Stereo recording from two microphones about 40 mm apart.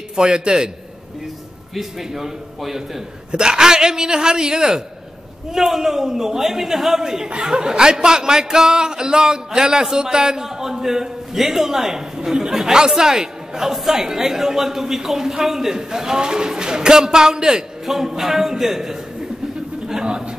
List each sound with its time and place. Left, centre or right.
0.1 s a man's voice: centre
1.8 s speech: centre
3.3 s speech: centre